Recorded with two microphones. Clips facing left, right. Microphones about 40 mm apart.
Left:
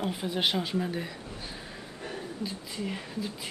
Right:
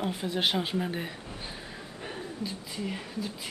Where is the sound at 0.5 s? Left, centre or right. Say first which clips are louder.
Even; centre.